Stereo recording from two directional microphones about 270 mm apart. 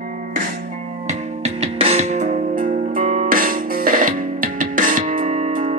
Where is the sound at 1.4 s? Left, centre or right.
Right.